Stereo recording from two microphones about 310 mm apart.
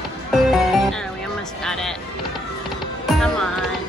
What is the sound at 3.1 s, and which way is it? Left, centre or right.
Music, centre.